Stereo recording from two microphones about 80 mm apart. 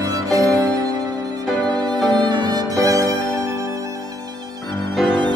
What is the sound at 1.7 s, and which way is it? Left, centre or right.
Music, right.